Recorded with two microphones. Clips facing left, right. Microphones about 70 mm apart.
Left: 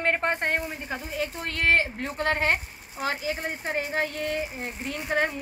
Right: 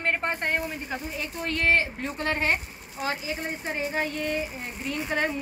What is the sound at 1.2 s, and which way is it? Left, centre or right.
Speech, left.